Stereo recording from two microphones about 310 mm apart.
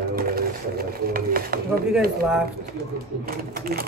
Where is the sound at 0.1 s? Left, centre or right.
Right.